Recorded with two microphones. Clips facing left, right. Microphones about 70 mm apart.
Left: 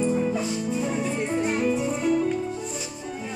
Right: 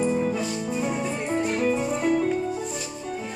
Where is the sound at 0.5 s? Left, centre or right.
Right.